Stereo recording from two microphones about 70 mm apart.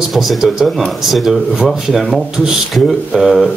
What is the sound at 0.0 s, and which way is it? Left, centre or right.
Speech, centre.